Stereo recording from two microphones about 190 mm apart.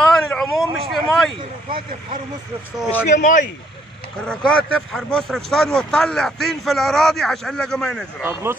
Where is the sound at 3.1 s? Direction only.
40° left (ahead or behind).